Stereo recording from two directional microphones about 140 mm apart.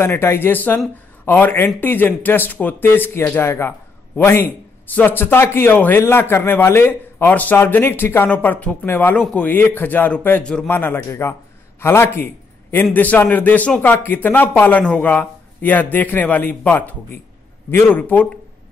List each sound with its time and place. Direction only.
0.0 s speech: 15° left (ahead or behind)